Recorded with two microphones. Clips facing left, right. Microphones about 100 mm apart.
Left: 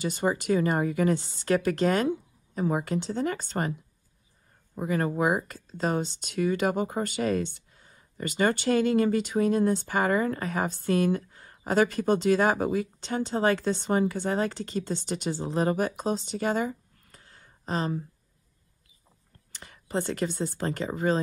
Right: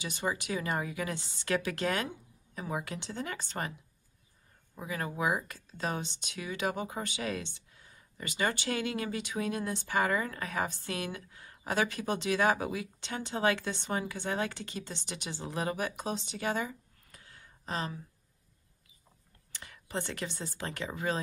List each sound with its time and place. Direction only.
0.0 s speech: 45° left (ahead or behind)
4.7 s speech: 45° left (ahead or behind)
19.6 s speech: 40° left (ahead or behind)